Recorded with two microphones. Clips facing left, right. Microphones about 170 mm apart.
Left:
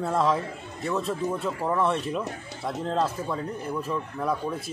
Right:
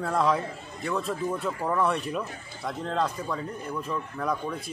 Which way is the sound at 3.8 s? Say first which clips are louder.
Even; 5° left (ahead or behind).